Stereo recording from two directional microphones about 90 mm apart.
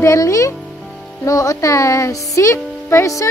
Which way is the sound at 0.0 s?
35° left (ahead or behind).